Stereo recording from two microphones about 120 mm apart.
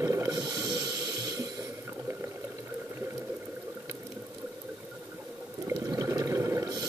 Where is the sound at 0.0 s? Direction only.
25° right (ahead or behind).